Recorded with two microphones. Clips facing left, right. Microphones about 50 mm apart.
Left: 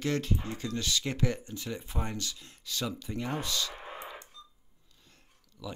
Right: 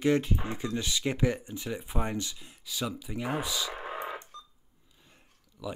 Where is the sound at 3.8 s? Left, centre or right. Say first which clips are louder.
Right 6 dB; right.